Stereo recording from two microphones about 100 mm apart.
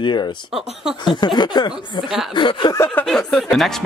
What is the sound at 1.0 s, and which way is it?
Speech, 45° left (ahead or behind).